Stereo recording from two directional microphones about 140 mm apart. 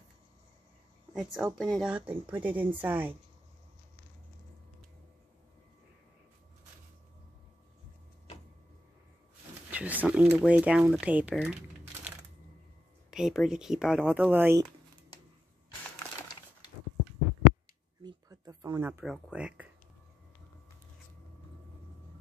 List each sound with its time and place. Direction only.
1.1 s speech: centre (ahead or behind)
9.7 s speech: 10° right (ahead or behind)
13.1 s speech: 5° right (ahead or behind)
16.2 s a sound: 25° left (ahead or behind)
18.0 s a sound: 25° right (ahead or behind)
19.0 s speech: 10° right (ahead or behind)